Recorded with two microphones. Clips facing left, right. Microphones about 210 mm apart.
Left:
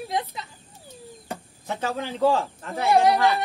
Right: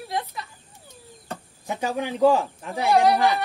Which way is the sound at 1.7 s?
15° right (ahead or behind).